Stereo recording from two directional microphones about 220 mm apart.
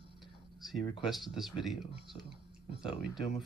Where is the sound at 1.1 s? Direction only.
Centre (ahead or behind).